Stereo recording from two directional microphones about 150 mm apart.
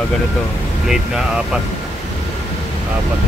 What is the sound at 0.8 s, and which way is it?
Speech, 5° right (ahead or behind).